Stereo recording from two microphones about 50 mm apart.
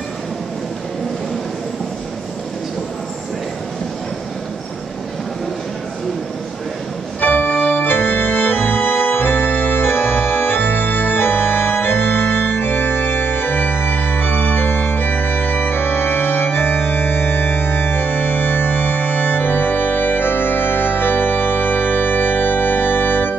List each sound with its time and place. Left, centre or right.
7.2 s organ: left